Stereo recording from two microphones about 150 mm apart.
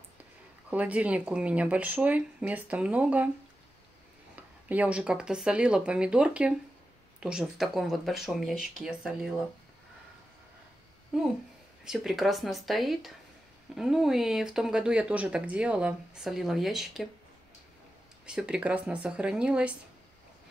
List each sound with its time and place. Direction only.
0.7 s speech: 10° right (ahead or behind)
4.6 s speech: 10° right (ahead or behind)
11.1 s speech: 5° right (ahead or behind)
18.2 s speech: 5° right (ahead or behind)